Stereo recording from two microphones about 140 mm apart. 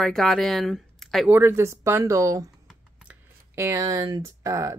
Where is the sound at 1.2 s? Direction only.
15° right (ahead or behind).